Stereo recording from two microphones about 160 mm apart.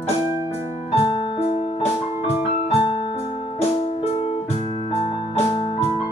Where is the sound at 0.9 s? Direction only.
35° left (ahead or behind).